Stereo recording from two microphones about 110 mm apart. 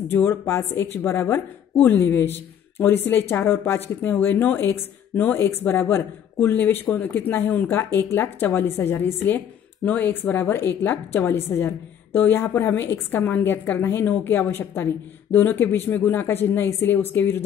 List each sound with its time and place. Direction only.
0.1 s a woman's voice: 20° left (ahead or behind)